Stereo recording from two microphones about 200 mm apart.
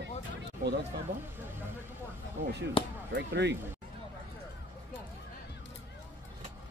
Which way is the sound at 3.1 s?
60° right (ahead or behind).